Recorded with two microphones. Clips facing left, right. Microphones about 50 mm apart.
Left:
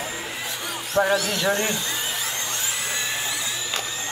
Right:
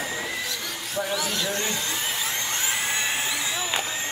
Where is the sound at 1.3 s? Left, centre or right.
Left.